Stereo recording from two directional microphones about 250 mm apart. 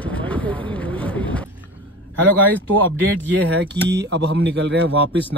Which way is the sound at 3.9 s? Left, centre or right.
Right.